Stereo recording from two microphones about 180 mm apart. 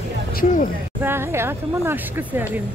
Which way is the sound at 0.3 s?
50° left (ahead or behind).